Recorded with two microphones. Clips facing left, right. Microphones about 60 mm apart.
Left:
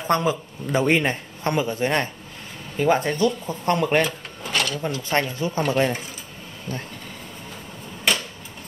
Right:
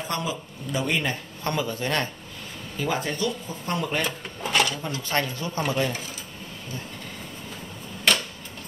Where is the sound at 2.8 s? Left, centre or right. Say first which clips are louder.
Left 7 dB; left.